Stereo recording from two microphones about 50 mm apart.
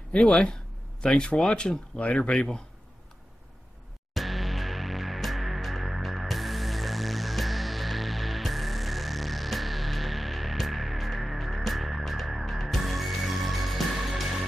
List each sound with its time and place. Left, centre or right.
0.1 s speech: left
4.1 s music: centre